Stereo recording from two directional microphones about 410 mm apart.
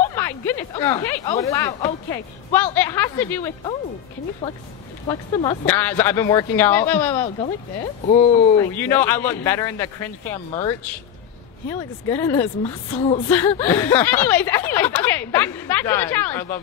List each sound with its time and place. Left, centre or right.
0.1 s a woman's voice: centre
5.0 s a woman's voice: centre
8.1 s speech: centre
8.7 s a woman's voice: centre